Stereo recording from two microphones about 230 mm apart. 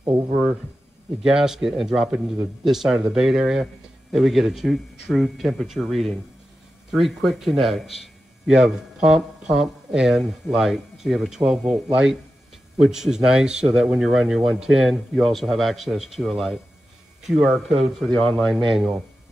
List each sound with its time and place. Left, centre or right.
0.0 s speech: right
1.2 s a man's voice: centre